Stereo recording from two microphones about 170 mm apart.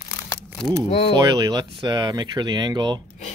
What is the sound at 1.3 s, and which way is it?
Speech, 25° right (ahead or behind).